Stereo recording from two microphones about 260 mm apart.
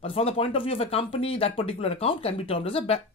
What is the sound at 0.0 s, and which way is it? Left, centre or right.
Speech, left.